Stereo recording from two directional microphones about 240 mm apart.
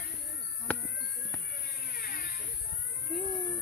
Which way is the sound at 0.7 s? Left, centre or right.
Centre.